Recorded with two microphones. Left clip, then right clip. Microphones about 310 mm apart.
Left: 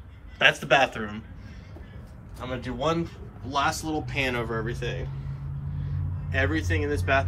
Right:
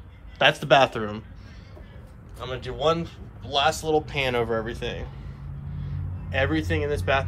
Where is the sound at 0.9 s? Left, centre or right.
Centre.